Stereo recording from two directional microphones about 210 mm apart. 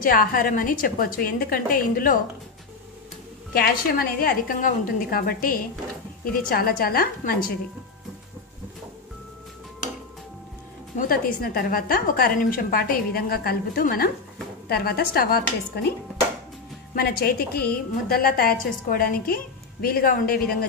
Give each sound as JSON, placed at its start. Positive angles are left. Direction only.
{"t": 0.0, "sound": "a woman's voice", "side_deg": 45}
{"t": 3.5, "sound": "a woman's voice", "side_deg": 45}
{"t": 11.0, "sound": "a woman's voice", "side_deg": 45}
{"t": 16.9, "sound": "a woman's voice", "side_deg": 45}